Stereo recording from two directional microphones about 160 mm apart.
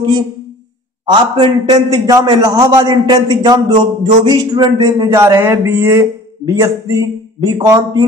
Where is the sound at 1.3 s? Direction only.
30° right (ahead or behind).